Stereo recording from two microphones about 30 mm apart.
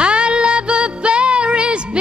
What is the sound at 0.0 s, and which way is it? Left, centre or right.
Music, right.